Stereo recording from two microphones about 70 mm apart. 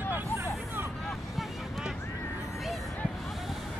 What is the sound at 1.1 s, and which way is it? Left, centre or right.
Boat, centre.